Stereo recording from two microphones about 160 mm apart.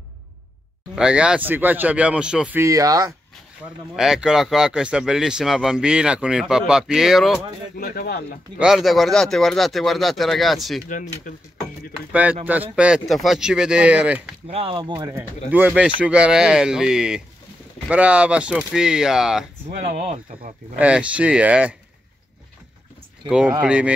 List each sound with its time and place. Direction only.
0.9 s speech: 5° right (ahead or behind)
2.6 s speech: 20° right (ahead or behind)
3.9 s speech: 5° right (ahead or behind)
7.7 s speech: 65° left (ahead or behind)
8.5 s speech: centre (ahead or behind)
10.9 s speech: 55° left (ahead or behind)
12.1 s speech: 10° right (ahead or behind)
14.5 s speech: 35° right (ahead or behind)
15.1 s speech: 10° right (ahead or behind)
19.7 s speech: 45° right (ahead or behind)
20.7 s speech: 10° right (ahead or behind)
23.2 s speech: 5° right (ahead or behind)